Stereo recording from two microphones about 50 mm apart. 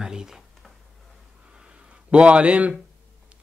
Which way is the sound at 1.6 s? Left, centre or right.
Right.